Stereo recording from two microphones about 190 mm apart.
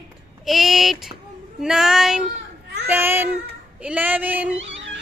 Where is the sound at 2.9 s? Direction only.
10° right (ahead or behind).